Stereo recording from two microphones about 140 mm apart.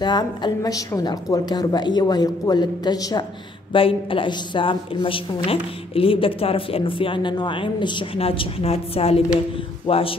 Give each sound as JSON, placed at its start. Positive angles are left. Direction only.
{"t": 0.0, "sound": "a woman's voice", "side_deg": 30}